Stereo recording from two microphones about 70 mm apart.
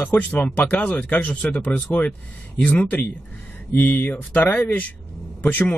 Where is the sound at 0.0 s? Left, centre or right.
Left.